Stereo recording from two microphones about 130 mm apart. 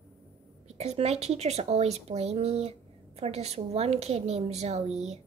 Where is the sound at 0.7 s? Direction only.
60° right (ahead or behind).